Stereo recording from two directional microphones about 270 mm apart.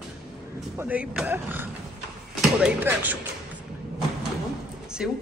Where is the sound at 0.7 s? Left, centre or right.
Centre.